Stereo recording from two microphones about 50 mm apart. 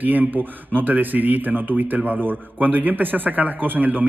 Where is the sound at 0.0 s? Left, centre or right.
Right.